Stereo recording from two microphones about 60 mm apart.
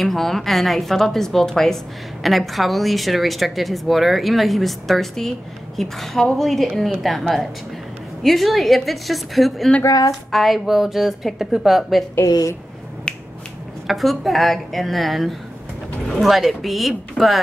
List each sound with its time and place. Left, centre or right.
0.0 s a woman's voice: centre
9.8 s speech: left
10.3 s a woman's voice: centre
12.3 s speech: left
13.8 s a woman's voice: centre